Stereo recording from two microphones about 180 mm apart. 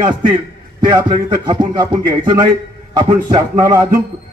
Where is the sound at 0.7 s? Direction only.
25° right (ahead or behind).